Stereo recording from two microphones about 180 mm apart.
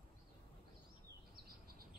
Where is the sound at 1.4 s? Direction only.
55° right (ahead or behind).